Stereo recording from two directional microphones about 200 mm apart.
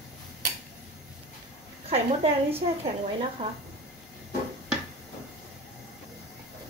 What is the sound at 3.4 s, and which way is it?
Speech, 25° right (ahead or behind).